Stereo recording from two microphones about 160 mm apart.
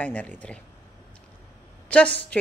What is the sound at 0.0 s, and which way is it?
Speech, 10° left (ahead or behind).